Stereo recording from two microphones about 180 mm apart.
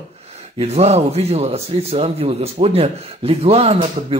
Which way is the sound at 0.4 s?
35° right (ahead or behind).